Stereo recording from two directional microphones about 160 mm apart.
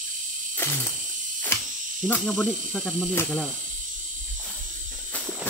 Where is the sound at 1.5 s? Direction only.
15° left (ahead or behind).